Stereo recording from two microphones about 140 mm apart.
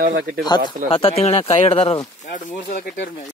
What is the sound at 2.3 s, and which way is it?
Speech, 90° left.